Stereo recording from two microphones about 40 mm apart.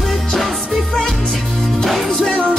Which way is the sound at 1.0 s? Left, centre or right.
Centre.